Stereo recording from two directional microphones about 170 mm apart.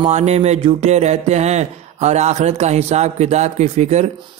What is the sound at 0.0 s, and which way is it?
Music, 40° right (ahead or behind).